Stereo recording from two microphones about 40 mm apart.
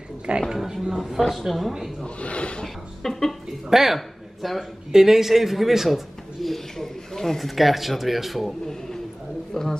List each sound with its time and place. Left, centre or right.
0.4 s speech: centre
2.0 s speech: left
2.6 s speech: centre
3.7 s speech: centre
8.6 s a sound: centre
9.5 s speech: centre